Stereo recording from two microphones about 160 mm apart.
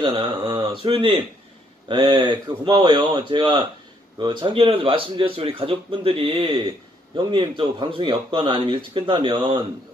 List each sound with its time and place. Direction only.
0.0 s speech: 30° right (ahead or behind)